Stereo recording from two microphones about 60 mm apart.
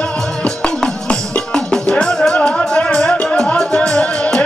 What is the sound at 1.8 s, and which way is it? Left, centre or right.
Music, centre.